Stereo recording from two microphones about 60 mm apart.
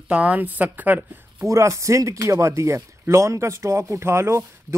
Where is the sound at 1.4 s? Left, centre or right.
Right.